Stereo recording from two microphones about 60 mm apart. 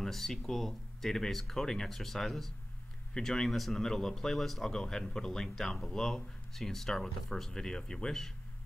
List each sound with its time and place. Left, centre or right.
0.0 s speech: centre